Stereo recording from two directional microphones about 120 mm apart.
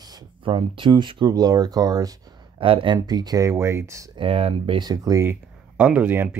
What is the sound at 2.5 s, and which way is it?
Speech, 45° right (ahead or behind).